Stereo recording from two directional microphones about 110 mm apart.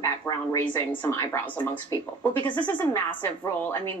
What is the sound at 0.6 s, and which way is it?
A woman's voice, 20° left (ahead or behind).